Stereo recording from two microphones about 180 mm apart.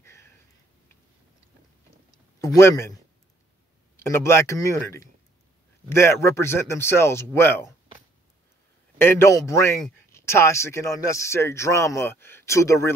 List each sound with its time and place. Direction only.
0.0 s a sound: 15° left (ahead or behind)
2.4 s speech: 20° left (ahead or behind)
5.9 s speech: 15° left (ahead or behind)
8.9 s speech: 15° left (ahead or behind)